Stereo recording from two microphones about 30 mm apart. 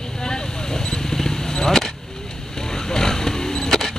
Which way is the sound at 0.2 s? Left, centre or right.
Left.